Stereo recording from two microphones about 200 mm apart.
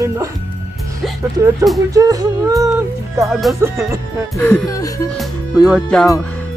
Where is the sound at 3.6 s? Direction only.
15° right (ahead or behind).